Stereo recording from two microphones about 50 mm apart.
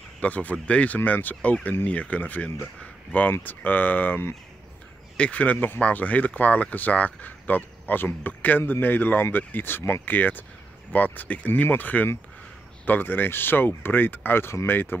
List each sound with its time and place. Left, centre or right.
0.2 s speech: left
5.1 s speech: left